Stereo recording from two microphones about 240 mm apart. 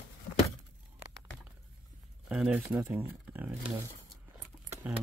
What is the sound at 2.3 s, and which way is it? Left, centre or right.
Speech, centre.